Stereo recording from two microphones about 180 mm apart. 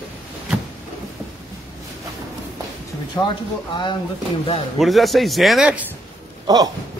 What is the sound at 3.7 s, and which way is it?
Speech, 25° left (ahead or behind).